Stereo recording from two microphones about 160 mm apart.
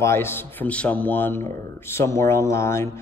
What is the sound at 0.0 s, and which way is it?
Speech, 15° left (ahead or behind).